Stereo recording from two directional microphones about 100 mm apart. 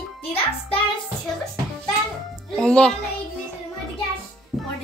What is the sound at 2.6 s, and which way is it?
Speech, 10° left (ahead or behind).